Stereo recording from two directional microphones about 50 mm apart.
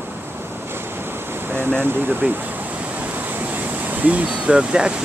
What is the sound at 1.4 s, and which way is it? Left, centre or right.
Speech, right.